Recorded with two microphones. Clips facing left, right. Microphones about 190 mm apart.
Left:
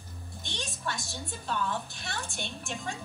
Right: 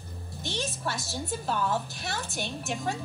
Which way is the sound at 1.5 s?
40° right (ahead or behind).